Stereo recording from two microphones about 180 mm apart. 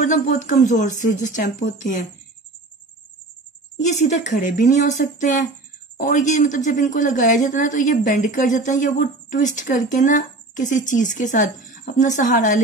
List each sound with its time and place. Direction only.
0.0 s a woman's voice: 45° left (ahead or behind)
3.7 s a woman's voice: 40° left (ahead or behind)